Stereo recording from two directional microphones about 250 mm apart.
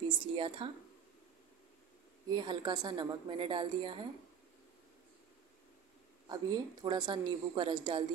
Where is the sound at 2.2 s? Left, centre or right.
Centre.